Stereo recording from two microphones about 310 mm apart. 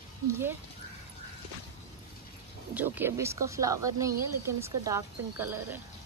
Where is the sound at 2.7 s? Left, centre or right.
Centre.